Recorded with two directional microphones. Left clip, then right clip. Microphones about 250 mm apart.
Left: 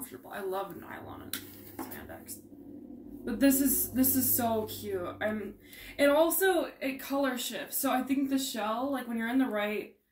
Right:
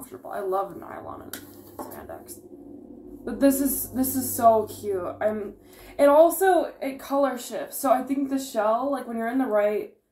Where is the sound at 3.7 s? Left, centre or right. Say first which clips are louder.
Right 2 dB; centre.